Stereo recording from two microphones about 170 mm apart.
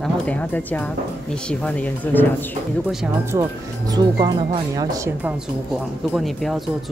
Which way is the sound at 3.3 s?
20° right (ahead or behind).